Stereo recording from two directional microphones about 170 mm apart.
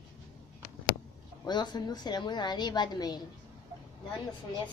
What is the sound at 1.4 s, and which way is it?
Speech, 25° left (ahead or behind).